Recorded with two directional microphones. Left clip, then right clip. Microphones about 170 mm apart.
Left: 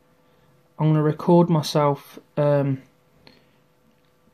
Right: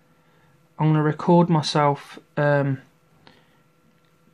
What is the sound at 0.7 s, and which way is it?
Speech, 5° left (ahead or behind).